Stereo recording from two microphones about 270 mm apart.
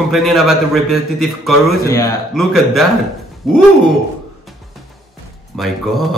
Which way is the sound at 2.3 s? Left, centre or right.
Centre.